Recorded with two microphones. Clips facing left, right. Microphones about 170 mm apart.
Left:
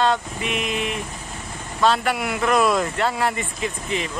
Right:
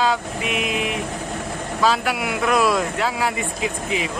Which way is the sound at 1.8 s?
Centre (ahead or behind).